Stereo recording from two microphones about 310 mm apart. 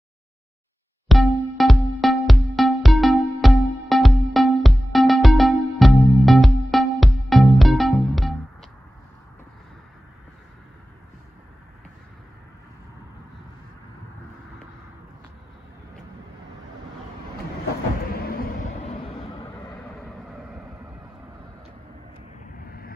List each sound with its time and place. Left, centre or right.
1.0 s music: centre
18.1 s vehicle: left
22.7 s vehicle: left